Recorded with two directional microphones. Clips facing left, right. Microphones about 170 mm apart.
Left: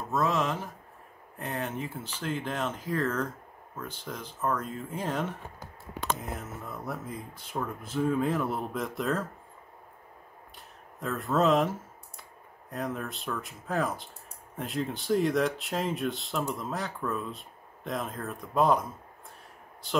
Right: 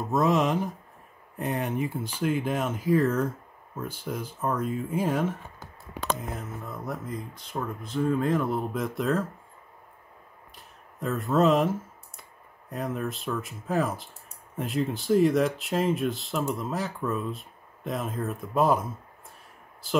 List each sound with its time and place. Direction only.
0.1 s speech: 15° right (ahead or behind); by 9.2 s centre (ahead or behind)
11.0 s speech: centre (ahead or behind)
12.7 s speech: centre (ahead or behind)